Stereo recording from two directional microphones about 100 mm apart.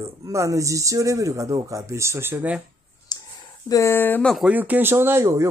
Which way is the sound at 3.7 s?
30° left (ahead or behind).